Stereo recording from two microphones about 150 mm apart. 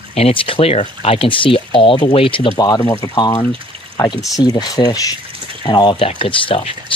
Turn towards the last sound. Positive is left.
turn(degrees=35)  # may be behind; listen again after turning